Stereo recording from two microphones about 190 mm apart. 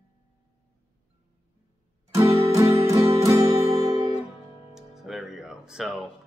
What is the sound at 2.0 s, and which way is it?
Music, 15° right (ahead or behind).